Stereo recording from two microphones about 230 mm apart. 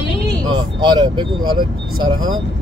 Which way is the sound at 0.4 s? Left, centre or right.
Centre.